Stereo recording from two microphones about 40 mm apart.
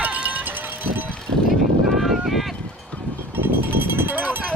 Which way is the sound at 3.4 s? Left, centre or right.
Right.